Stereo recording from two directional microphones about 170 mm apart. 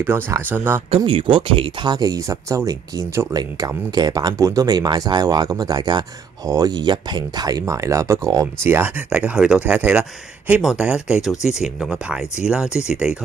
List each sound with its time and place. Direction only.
0.0 s speech: 15° right (ahead or behind)
0.8 s speech: 35° right (ahead or behind); by 13.2 s 5° right (ahead or behind)